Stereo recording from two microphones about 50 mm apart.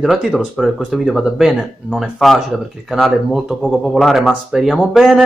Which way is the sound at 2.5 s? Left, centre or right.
Centre.